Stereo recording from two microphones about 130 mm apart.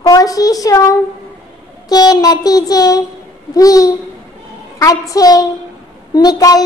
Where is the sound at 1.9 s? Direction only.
30° left (ahead or behind).